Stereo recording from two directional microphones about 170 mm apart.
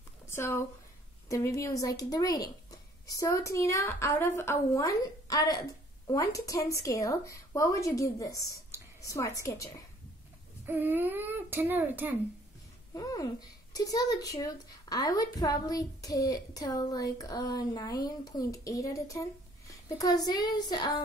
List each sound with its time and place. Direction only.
0.3 s speech: 15° left (ahead or behind)
10.6 s a child's voice: 10° right (ahead or behind)
12.9 s speech: 20° left (ahead or behind)